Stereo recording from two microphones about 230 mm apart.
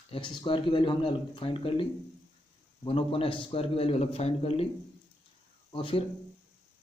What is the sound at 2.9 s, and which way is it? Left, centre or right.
Speech, left.